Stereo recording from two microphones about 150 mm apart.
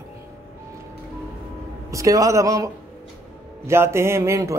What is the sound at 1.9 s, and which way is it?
A man's voice, 20° right (ahead or behind).